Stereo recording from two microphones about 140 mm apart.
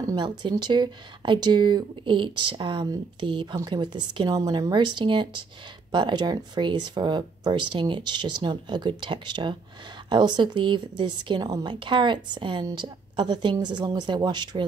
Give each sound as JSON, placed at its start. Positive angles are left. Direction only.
{"t": 0.0, "sound": "speech", "side_deg": -30}